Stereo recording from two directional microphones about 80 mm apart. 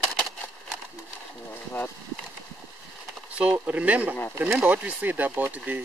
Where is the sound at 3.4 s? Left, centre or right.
Centre.